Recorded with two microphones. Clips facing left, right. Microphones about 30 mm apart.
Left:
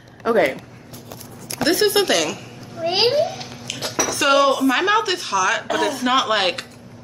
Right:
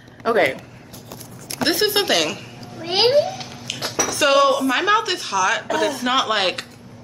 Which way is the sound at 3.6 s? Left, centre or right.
Centre.